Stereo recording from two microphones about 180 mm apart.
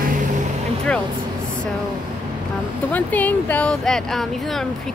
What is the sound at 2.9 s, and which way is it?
Speech, 10° left (ahead or behind).